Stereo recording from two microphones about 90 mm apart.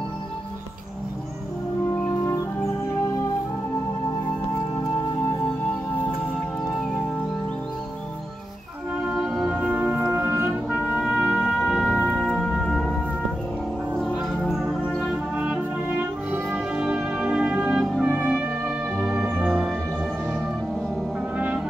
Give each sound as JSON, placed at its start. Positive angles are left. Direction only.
{"t": 9.1, "sound": "music", "side_deg": -5}
{"t": 10.1, "sound": "music", "side_deg": -25}
{"t": 10.7, "sound": "music", "side_deg": -5}